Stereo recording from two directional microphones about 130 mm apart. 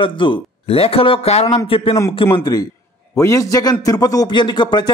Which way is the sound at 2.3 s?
30° left (ahead or behind).